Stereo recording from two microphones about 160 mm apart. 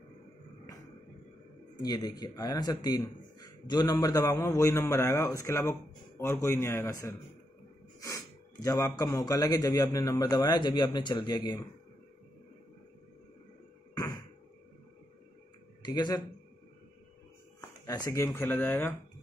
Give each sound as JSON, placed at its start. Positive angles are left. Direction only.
{"t": 1.8, "sound": "a man's voice", "side_deg": 25}
{"t": 15.8, "sound": "speech", "side_deg": 25}
{"t": 17.6, "sound": "speech", "side_deg": 25}